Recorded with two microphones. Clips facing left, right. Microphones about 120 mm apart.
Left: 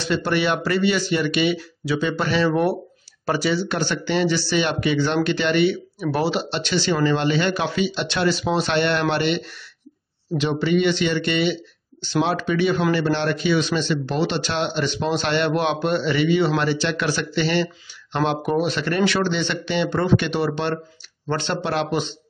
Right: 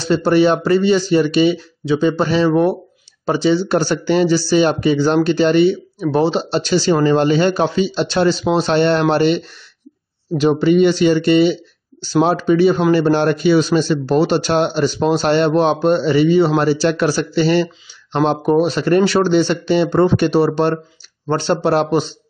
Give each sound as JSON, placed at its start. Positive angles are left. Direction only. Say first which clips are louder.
{"t": 0.0, "sound": "a man's voice", "louder": "right 8 dB", "side_deg": -35}